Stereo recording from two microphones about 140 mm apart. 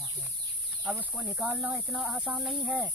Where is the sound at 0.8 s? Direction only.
10° right (ahead or behind).